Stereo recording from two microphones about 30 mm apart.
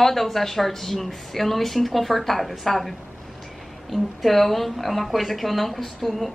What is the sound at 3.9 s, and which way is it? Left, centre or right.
A woman's voice, centre.